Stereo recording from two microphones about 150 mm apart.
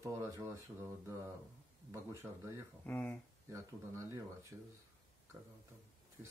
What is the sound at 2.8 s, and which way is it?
Speech, 10° left (ahead or behind).